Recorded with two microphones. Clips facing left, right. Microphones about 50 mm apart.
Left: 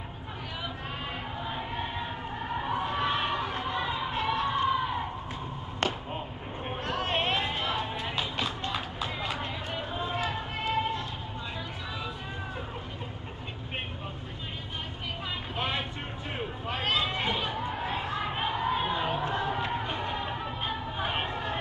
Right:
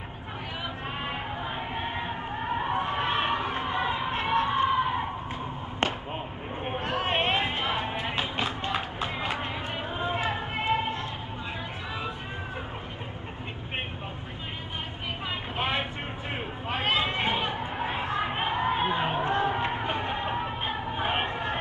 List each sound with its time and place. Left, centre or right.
1.0 s music: right
5.8 s a sound: right
6.6 s music: right
15.5 s vehicle: right
16.3 s chatter: right